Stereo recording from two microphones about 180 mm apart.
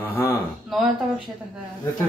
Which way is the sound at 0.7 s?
Centre (ahead or behind).